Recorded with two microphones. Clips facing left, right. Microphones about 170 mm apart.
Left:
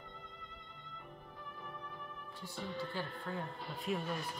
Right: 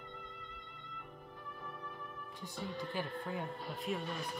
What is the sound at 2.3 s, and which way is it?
Speech, 15° right (ahead or behind).